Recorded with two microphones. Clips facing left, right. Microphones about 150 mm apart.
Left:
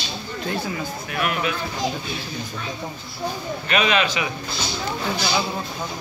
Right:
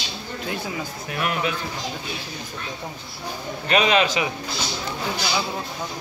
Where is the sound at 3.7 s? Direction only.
35° right (ahead or behind).